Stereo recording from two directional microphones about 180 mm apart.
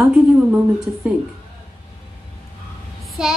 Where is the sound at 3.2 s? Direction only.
5° right (ahead or behind).